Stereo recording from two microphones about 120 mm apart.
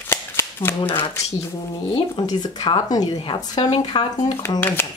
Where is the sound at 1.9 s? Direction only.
35° left (ahead or behind).